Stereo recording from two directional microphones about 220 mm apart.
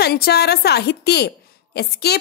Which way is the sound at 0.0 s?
45° left (ahead or behind).